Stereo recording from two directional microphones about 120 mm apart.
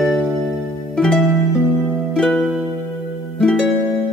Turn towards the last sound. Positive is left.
turn(degrees=5)  # may be behind; listen again after turning